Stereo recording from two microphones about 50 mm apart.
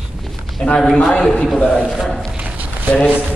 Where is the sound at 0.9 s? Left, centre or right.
Centre.